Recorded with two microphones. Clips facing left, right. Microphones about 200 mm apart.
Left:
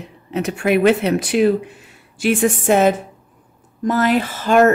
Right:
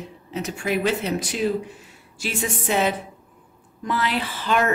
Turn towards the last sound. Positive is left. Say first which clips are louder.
# left 9 dB
turn(degrees=45)  # may be behind; listen again after turning